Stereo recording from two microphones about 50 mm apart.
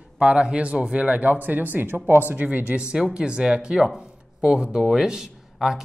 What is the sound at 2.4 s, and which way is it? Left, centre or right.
A man's voice, right.